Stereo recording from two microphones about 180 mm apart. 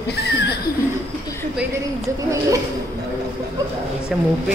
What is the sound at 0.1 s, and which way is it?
Chuckle, 65° left (ahead or behind).